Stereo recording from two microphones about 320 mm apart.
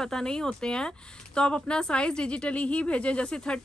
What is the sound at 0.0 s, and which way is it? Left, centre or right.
Speech, centre.